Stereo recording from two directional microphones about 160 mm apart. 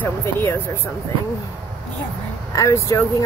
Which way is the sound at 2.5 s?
20° left (ahead or behind).